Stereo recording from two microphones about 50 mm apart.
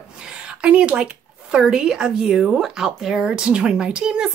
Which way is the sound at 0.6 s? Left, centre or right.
Right.